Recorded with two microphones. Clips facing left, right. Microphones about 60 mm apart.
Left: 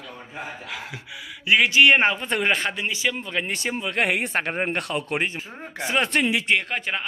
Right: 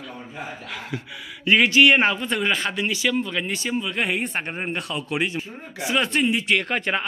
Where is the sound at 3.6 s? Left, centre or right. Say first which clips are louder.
Even; left.